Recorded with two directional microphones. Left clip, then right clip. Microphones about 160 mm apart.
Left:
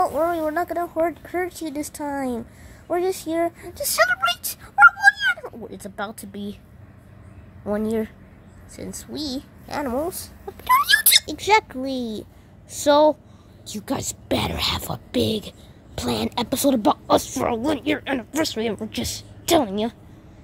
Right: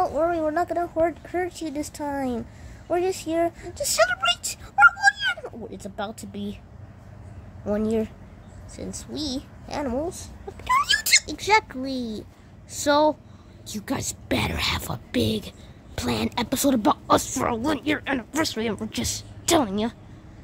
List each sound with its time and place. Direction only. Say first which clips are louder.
0.0 s a woman's voice: left 2 dB; 10° left (ahead or behind)
7.6 s a woman's voice: left 1 dB; centre (ahead or behind)
9.9 s a woman's voice: left 3 dB; 35° left (ahead or behind)
10.6 s a woman's voice: left 4 dB; 15° left (ahead or behind)